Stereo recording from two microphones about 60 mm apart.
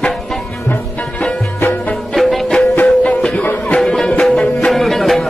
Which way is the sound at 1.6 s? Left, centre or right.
Left.